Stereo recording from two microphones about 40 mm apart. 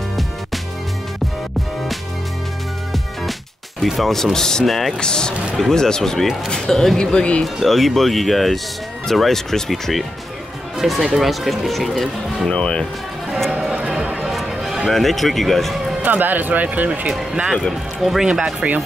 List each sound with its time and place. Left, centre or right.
3.8 s speech: centre
4.6 s speech: centre
4.9 s speech: centre
7.0 s speech: centre
7.4 s speech: centre
10.8 s speech: centre
12.4 s speech: left
13.7 s a sound: right
14.5 s music: centre
14.9 s speech: centre
16.0 s speech: right
18.2 s speech: centre